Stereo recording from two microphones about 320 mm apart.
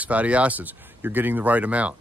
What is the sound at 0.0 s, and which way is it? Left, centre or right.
Speech, centre.